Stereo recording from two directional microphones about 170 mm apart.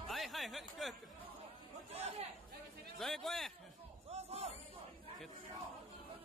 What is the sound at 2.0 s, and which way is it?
Chatter, 40° right (ahead or behind).